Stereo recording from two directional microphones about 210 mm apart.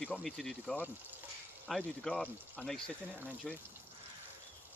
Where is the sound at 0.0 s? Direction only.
5° left (ahead or behind).